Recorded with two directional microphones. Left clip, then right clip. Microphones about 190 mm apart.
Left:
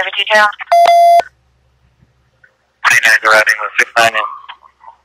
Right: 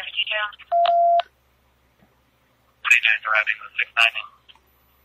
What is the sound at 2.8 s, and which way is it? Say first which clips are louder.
Telephone: left 9 dB; 45° left (ahead or behind).